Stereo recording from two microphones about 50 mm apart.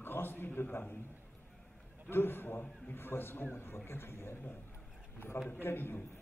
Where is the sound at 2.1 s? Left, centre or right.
Left.